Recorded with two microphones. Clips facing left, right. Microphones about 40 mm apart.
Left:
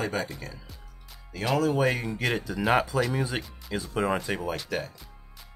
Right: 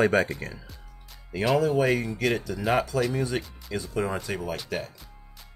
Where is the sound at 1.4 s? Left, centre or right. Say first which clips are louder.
Right 2 dB; centre.